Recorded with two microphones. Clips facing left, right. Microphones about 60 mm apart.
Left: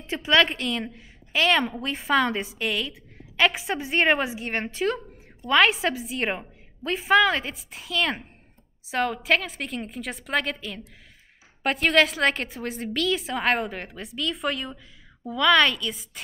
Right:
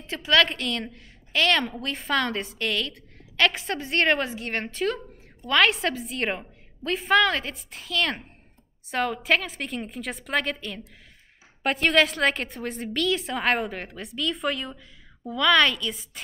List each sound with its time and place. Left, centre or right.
0.0 s a woman's voice: left
0.5 s a woman's voice: centre